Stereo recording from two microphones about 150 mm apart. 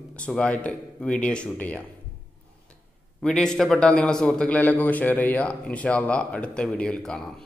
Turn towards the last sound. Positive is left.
turn(degrees=5)  # may be behind; listen again after turning